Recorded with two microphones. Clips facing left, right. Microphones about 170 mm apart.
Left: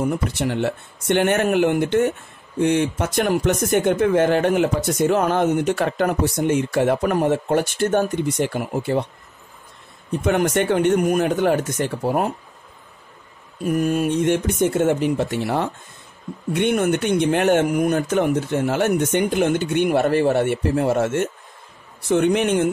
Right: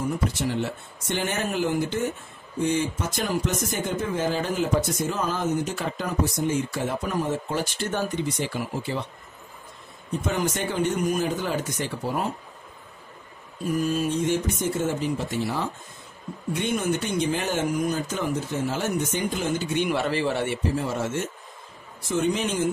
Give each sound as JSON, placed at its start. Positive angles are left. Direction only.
{"t": 0.0, "sound": "speech", "side_deg": 65}
{"t": 10.2, "sound": "speech", "side_deg": 65}
{"t": 13.7, "sound": "speech", "side_deg": 60}